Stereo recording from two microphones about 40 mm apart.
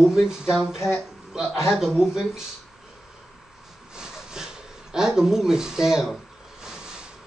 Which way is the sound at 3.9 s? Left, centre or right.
Centre.